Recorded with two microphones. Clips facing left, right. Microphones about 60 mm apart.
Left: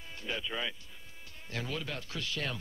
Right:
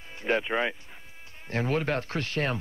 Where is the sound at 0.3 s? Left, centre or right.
Right.